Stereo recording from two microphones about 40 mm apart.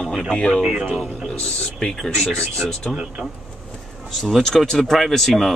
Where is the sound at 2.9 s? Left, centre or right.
Right.